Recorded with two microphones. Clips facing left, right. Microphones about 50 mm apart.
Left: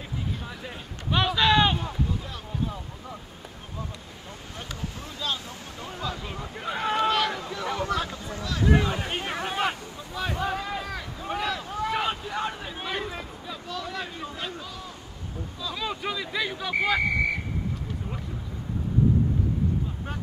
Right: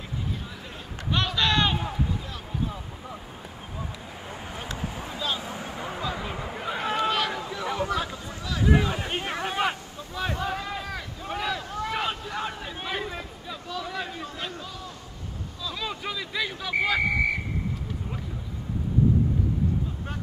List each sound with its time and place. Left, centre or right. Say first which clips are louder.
1.1 s a sound: left 3 dB; centre
4.3 s vehicle: right 3 dB; centre
5.4 s speech: right 5 dB; right
6.6 s a sound: left 2 dB; centre
10.3 s boat: left 4 dB; centre
14.3 s speech: even; centre